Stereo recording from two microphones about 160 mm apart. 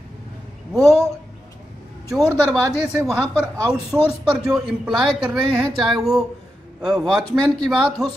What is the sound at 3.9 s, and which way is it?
A man's voice, 5° right (ahead or behind).